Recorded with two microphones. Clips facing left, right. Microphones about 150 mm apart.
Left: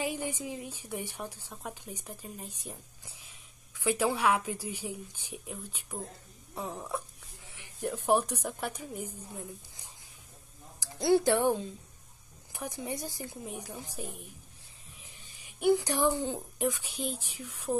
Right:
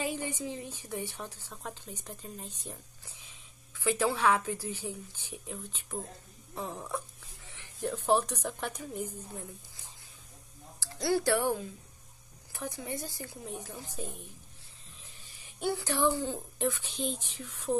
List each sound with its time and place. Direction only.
0.0 s a woman's voice: 10° left (ahead or behind)
10.8 s a woman's voice: 20° left (ahead or behind)